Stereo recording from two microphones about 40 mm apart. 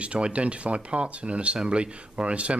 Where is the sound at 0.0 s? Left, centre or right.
Right.